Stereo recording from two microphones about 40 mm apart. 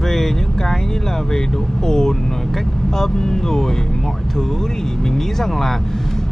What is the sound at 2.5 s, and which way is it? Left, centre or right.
Speech, centre.